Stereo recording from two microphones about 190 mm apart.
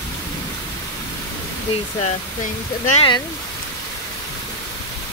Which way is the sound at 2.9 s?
25° left (ahead or behind).